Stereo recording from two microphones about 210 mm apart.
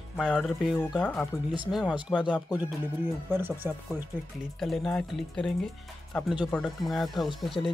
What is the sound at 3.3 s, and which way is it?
Speech, 10° right (ahead or behind).